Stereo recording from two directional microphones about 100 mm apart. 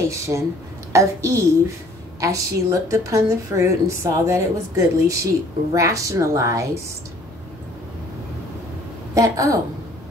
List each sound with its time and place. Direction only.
0.3 s a woman's voice: 30° right (ahead or behind)
9.1 s a woman's voice: 35° right (ahead or behind)